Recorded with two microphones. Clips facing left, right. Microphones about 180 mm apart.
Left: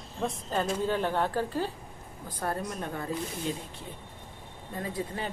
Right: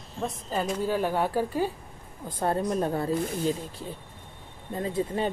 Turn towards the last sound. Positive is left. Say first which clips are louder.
# right 6 dB
turn(degrees=-25)  # may be behind; listen again after turning